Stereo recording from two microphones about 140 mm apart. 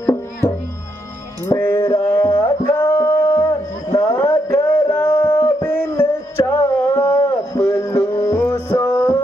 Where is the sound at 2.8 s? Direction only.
15° left (ahead or behind).